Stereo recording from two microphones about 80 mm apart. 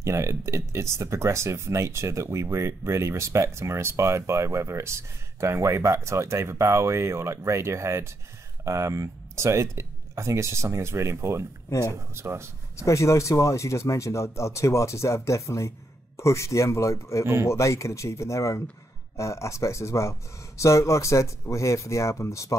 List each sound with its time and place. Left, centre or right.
0.0 s speech: right
11.7 s speech: left
12.2 s speech: right
12.7 s speech: left